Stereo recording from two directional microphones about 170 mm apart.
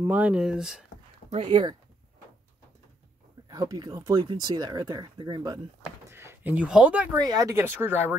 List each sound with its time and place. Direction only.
0.0 s speech: 10° right (ahead or behind)
1.3 s speech: 30° right (ahead or behind)
3.4 s speech: 25° right (ahead or behind)
6.0 s a sound: 15° right (ahead or behind)
7.2 s speech: 20° right (ahead or behind)